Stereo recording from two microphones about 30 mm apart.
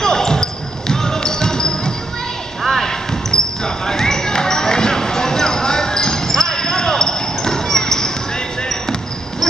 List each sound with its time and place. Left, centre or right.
0.0 s basketball bounce: left